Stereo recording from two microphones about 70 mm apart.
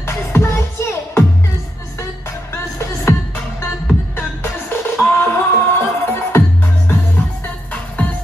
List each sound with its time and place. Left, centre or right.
0.0 s music: left
2.5 s music: left